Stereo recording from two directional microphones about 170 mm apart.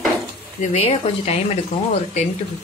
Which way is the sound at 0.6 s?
40° left (ahead or behind).